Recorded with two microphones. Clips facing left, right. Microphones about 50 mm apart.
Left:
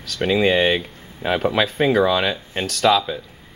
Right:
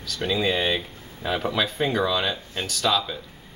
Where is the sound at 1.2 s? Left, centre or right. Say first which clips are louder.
Left 5 dB; left.